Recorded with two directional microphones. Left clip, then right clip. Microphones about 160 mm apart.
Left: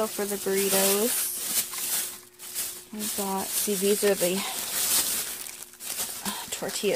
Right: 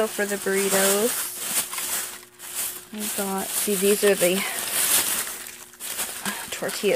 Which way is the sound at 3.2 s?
5° left (ahead or behind).